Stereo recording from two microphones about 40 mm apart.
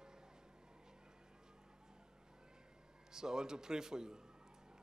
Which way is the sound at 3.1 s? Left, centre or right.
Centre.